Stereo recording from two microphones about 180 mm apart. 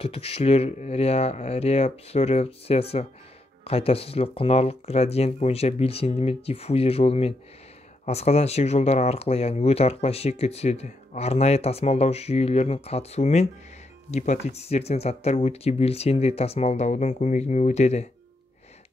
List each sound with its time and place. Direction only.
0.0 s speech: 30° left (ahead or behind)